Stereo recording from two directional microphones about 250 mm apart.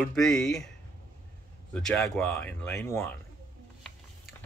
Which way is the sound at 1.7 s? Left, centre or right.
Centre.